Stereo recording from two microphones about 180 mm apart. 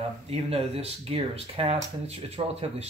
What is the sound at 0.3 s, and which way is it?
Speech, 35° right (ahead or behind).